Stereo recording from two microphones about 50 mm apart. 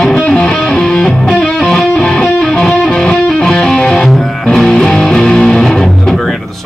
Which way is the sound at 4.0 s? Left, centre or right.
Centre.